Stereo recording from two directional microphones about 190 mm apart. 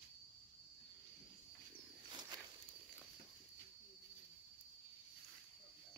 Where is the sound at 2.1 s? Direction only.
20° right (ahead or behind).